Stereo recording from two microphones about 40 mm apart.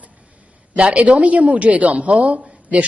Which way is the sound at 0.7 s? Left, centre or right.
Right.